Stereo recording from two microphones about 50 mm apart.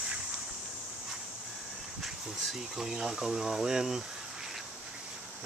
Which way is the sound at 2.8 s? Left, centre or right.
Centre.